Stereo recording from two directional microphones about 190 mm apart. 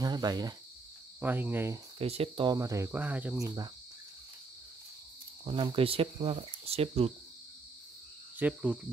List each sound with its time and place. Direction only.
0.0 s speech: 20° right (ahead or behind)
2.0 s speech: 30° right (ahead or behind); by 3.4 s 10° right (ahead or behind)
3.4 s speech: 20° right (ahead or behind)
5.4 s speech: 25° right (ahead or behind)
8.4 s speech: 5° right (ahead or behind)